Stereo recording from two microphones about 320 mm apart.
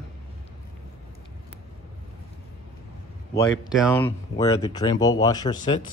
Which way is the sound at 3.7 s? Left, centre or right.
Centre.